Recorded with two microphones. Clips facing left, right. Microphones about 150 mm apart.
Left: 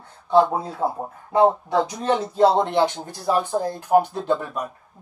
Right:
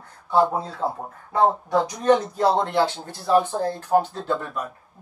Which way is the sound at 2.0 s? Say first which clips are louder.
Left 1 dB; 25° left (ahead or behind).